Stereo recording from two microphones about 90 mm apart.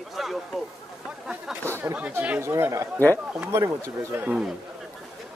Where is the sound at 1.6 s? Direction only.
30° right (ahead or behind).